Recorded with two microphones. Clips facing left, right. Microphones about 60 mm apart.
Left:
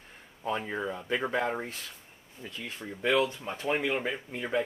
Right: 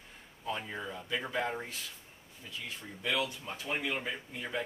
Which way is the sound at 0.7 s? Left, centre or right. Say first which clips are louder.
Left 6 dB; left.